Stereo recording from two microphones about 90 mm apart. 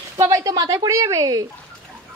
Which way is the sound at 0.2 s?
40° right (ahead or behind).